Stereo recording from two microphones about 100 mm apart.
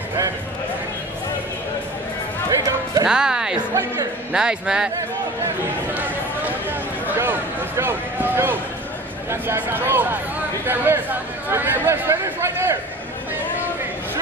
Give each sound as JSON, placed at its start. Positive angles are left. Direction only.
{"t": 2.5, "sound": "music", "side_deg": -35}
{"t": 3.1, "sound": "a man's voice", "side_deg": -5}
{"t": 3.7, "sound": "speech", "side_deg": -30}
{"t": 4.3, "sound": "a man's voice", "side_deg": -10}
{"t": 7.1, "sound": "a sound", "side_deg": -20}
{"t": 9.3, "sound": "speech", "side_deg": -25}